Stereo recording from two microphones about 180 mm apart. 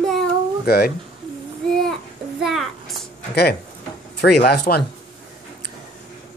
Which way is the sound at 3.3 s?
60° left (ahead or behind).